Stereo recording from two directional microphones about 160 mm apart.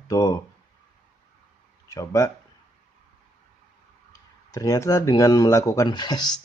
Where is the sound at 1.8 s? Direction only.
20° left (ahead or behind).